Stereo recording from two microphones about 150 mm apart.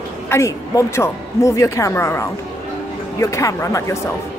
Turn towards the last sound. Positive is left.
turn(degrees=20)  # may be behind; listen again after turning